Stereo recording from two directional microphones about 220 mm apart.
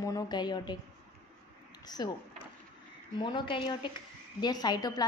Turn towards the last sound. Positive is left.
turn(degrees=20)  # may be behind; listen again after turning